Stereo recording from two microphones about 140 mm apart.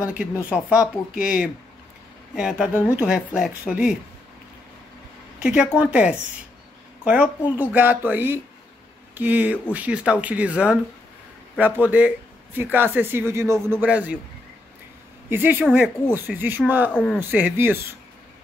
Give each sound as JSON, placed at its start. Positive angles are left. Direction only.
{"t": 0.5, "sound": "speech", "side_deg": -10}
{"t": 5.4, "sound": "speech", "side_deg": -10}
{"t": 7.5, "sound": "speech", "side_deg": -15}
{"t": 15.2, "sound": "speech", "side_deg": -15}
{"t": 16.9, "sound": "speech", "side_deg": 5}
{"t": 17.2, "sound": "speech", "side_deg": -15}